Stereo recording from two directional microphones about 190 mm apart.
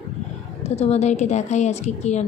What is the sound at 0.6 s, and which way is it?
A woman's voice, 35° left (ahead or behind).